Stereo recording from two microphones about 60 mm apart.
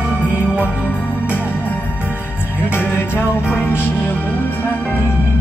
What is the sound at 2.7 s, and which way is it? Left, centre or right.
Music, left.